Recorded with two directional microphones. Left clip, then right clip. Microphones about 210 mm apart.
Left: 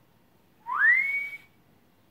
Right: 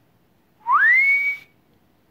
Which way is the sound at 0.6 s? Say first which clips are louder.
Right 8 dB; 40° right (ahead or behind).